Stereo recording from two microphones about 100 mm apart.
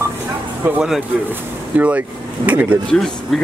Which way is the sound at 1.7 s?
15° right (ahead or behind).